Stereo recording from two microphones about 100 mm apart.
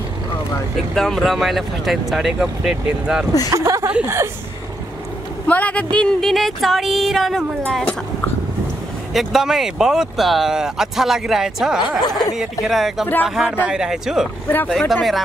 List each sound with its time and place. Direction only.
0.9 s speech: 5° left (ahead or behind)
3.5 s a woman's voice: 30° right (ahead or behind)
5.5 s a man's voice: 15° left (ahead or behind)
5.9 s speech: centre (ahead or behind)
7.6 s a man's voice: 10° left (ahead or behind)
9.1 s speech: centre (ahead or behind)